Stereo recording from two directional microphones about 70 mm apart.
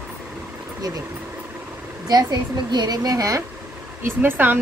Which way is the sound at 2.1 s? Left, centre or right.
Right.